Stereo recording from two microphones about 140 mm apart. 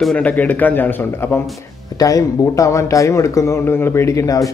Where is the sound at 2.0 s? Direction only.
25° left (ahead or behind).